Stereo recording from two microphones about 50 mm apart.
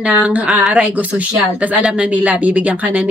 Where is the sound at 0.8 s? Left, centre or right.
Right.